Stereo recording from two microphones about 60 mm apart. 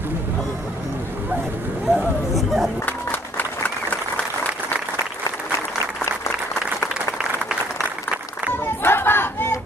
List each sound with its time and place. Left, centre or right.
1.9 s chatter: centre
2.8 s applause: left
8.8 s a sound: left